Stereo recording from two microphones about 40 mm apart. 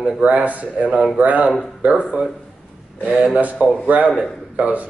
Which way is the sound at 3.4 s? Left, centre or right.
Right.